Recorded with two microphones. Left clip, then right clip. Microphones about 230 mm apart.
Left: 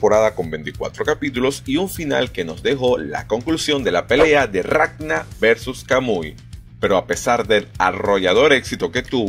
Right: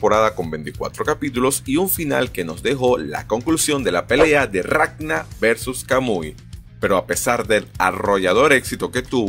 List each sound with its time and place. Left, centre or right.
0.0 s speech: centre
0.4 s speech: centre